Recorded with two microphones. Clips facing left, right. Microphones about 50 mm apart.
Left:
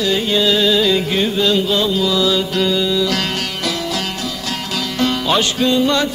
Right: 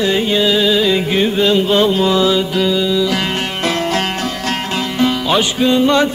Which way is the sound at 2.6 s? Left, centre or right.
Centre.